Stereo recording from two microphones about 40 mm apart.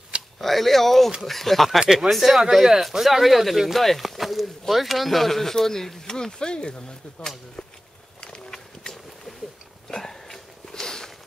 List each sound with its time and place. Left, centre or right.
0.4 s speech: centre
1.8 s speech: centre
2.0 s speech: centre; by 6.8 s left
8.5 s boat: centre
9.8 s a sound: centre